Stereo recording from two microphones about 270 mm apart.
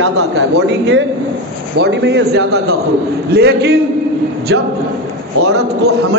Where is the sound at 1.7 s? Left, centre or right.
Right.